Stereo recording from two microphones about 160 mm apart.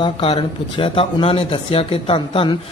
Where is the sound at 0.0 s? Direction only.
35° left (ahead or behind).